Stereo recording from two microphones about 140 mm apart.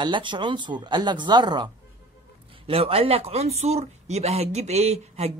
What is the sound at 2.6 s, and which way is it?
Speech, 45° right (ahead or behind).